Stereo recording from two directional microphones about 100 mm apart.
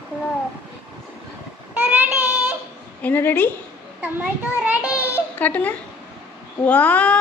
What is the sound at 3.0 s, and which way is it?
Speech, 20° left (ahead or behind).